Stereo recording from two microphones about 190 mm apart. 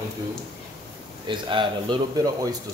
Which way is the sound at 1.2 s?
25° right (ahead or behind).